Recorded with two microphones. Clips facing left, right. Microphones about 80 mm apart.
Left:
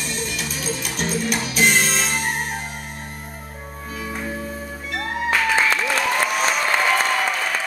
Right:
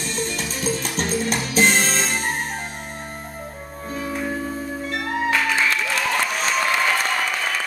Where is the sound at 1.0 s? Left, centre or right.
Right.